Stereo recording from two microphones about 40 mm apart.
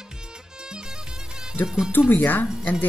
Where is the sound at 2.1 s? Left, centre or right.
Left.